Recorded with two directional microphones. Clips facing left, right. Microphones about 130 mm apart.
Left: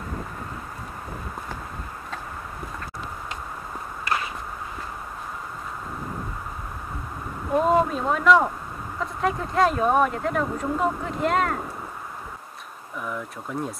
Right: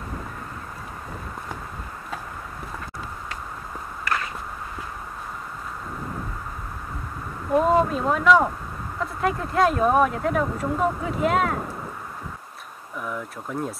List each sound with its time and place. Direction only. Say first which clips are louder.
4.1 s a sound: even; 20° left (ahead or behind)
7.5 s speech: right 1 dB; centre (ahead or behind)
12.9 s speech: even; centre (ahead or behind)